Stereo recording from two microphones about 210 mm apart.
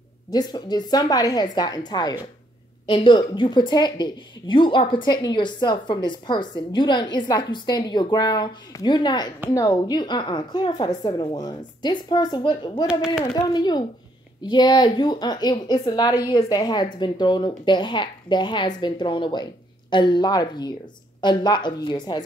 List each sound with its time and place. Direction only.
0.3 s a woman's voice: 20° left (ahead or behind)
12.8 s speech: 5° right (ahead or behind)
13.2 s a woman's voice: 20° left (ahead or behind)